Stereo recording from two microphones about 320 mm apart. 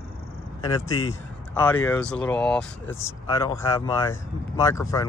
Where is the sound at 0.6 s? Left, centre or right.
Centre.